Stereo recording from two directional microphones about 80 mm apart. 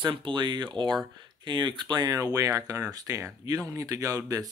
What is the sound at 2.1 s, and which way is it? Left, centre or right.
Speech, right.